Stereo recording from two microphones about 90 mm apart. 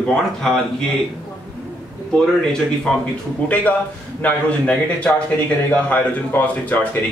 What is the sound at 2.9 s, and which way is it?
A man's voice, 5° left (ahead or behind).